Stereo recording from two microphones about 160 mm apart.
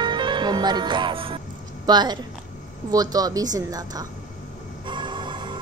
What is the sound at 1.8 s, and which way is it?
A woman's voice, 25° right (ahead or behind).